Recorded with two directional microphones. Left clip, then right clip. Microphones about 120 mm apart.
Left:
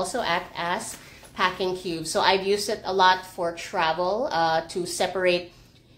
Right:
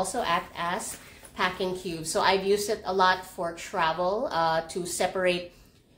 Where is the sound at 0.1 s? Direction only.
25° left (ahead or behind).